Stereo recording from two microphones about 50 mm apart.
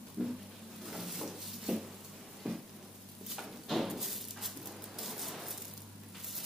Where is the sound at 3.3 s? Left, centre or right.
Centre.